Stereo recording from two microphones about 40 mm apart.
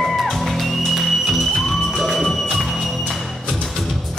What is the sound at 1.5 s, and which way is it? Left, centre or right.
Music, centre.